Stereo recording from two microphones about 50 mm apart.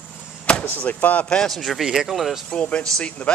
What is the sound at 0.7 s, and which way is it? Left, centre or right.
Speech, left.